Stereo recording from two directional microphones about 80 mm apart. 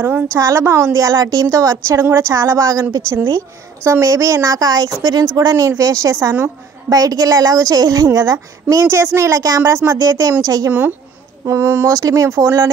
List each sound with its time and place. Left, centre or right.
0.0 s a woman's voice: right
5.5 s a woman's voice: right
6.1 s a woman's voice: right
6.9 s a woman's voice: right
8.8 s a woman's voice: right
10.7 s a woman's voice: right
11.4 s a woman's voice: right